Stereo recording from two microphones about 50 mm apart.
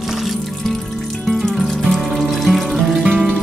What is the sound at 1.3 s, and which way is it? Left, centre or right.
Music, centre.